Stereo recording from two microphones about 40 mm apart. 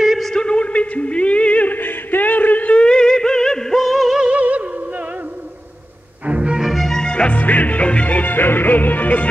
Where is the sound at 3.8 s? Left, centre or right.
Centre.